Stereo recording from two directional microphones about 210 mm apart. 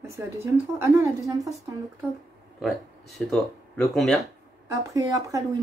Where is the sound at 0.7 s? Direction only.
15° right (ahead or behind).